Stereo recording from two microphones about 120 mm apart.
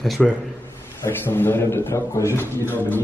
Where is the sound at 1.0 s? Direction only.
20° left (ahead or behind).